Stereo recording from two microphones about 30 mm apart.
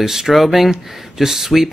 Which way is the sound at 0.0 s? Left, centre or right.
Centre.